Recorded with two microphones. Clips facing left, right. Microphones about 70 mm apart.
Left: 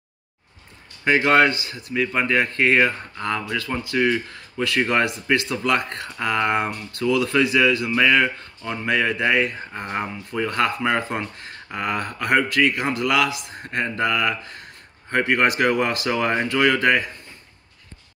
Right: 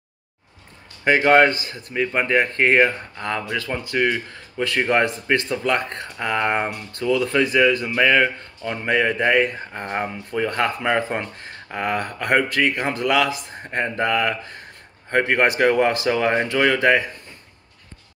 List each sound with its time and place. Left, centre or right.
1.0 s speech: right